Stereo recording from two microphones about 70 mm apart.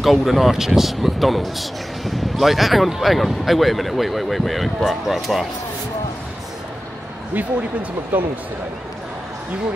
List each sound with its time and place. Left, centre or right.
0.0 s speech: centre
8.1 s speech: right